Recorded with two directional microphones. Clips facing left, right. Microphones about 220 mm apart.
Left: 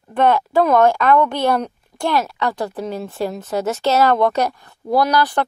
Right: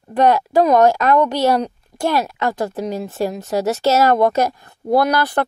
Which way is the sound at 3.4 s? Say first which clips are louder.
Right 2 dB; 40° right (ahead or behind).